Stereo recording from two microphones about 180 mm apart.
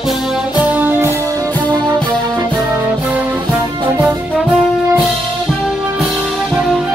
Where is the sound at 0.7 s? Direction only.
10° right (ahead or behind).